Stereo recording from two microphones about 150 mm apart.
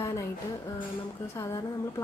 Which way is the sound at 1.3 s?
20° left (ahead or behind).